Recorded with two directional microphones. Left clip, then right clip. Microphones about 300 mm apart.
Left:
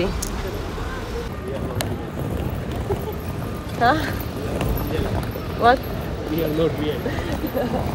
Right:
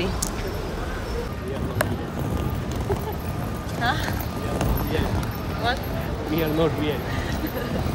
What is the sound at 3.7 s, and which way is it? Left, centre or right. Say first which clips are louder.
Speech: left 7 dB; centre.